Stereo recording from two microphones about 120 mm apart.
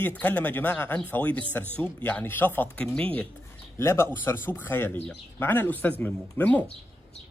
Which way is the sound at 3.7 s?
20° left (ahead or behind).